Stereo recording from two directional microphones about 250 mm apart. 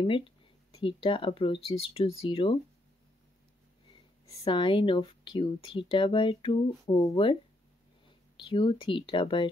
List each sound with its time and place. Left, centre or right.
0.0 s speech: left
4.5 s speech: centre
8.5 s speech: centre